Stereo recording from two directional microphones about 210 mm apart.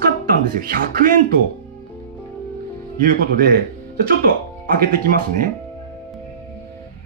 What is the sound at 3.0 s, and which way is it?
Speech, 40° right (ahead or behind).